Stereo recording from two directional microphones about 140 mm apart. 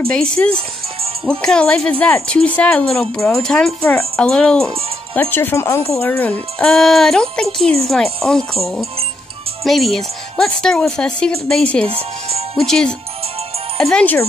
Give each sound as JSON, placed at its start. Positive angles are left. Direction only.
{"t": 0.4, "sound": "speech", "side_deg": 10}
{"t": 9.7, "sound": "speech", "side_deg": 0}
{"t": 11.9, "sound": "speech", "side_deg": -45}
{"t": 12.5, "sound": "speech", "side_deg": 5}